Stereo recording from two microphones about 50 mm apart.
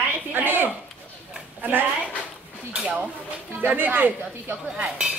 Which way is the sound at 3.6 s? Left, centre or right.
Right.